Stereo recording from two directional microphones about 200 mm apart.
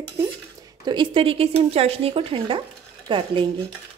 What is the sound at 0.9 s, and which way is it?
Speech, 25° right (ahead or behind).